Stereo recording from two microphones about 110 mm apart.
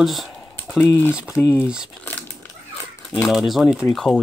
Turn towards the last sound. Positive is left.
turn(degrees=0)  # may be behind; listen again after turning